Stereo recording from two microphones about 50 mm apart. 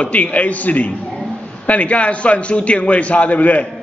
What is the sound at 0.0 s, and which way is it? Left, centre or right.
A man's voice, left.